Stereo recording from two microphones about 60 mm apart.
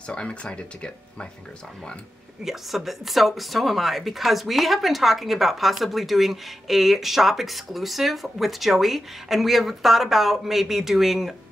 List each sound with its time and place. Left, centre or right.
0.1 s speech: centre
2.4 s speech: centre